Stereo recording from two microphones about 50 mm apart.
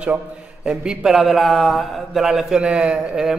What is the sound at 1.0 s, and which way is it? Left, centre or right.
A man's voice, centre.